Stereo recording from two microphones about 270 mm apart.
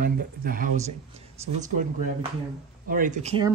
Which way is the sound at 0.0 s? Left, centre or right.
Right.